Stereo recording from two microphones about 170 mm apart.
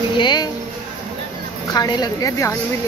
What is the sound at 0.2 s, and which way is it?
Music, 25° left (ahead or behind).